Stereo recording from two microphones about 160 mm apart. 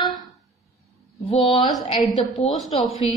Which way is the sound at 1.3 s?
30° left (ahead or behind).